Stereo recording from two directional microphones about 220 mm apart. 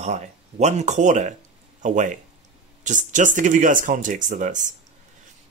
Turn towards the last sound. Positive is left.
turn(degrees=-35)  # may be behind; listen again after turning